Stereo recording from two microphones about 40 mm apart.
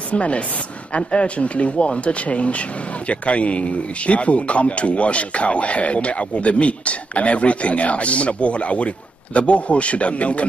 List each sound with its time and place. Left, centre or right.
0.1 s speech: left